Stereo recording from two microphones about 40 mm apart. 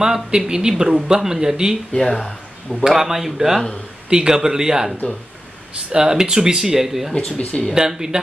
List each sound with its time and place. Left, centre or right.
0.0 s speech: centre
2.1 s speech: centre
2.9 s speech: centre
7.2 s speech: left
7.7 s speech: centre